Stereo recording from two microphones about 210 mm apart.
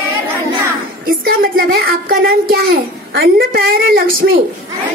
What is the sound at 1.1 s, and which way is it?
A child's voice, 45° right (ahead or behind).